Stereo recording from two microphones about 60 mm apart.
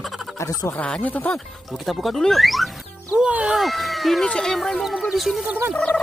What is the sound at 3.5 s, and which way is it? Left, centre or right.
Speech, centre.